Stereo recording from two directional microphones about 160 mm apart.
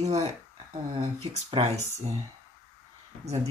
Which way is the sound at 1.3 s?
45° right (ahead or behind).